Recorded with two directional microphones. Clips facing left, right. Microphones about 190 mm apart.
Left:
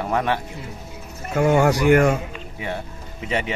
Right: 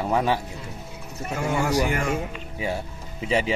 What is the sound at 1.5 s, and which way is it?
Speech, 65° left (ahead or behind).